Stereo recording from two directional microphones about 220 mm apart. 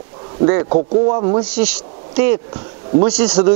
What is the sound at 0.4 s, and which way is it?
Speech, 25° right (ahead or behind).